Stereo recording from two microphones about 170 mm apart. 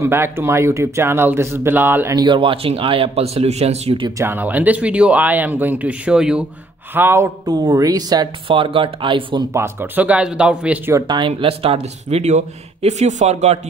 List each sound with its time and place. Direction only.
0.0 s speech: 15° right (ahead or behind)
2.2 s speech: 30° right (ahead or behind)
4.2 s speech: 10° right (ahead or behind); by 9.4 s 30° right (ahead or behind)
9.5 s speech: 15° right (ahead or behind)
11.1 s speech: 30° right (ahead or behind)